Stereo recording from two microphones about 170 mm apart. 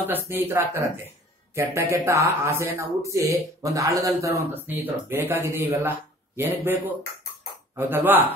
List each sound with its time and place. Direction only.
0.0 s speech: 10° right (ahead or behind)